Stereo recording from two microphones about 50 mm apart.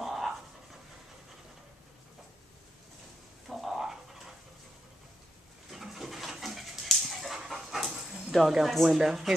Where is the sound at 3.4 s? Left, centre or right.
Centre.